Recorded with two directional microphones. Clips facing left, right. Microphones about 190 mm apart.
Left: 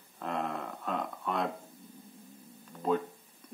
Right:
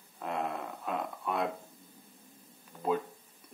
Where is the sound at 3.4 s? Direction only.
10° right (ahead or behind).